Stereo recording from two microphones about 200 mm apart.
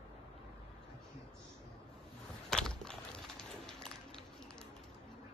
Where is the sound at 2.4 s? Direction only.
5° left (ahead or behind).